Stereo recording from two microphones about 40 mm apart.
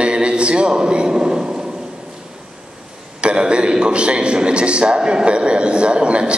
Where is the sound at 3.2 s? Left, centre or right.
Right.